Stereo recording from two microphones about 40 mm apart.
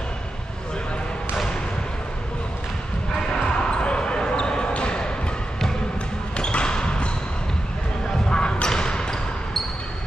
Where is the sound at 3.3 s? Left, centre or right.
Left.